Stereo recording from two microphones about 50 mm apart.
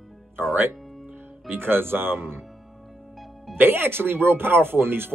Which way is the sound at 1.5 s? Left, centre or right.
Right.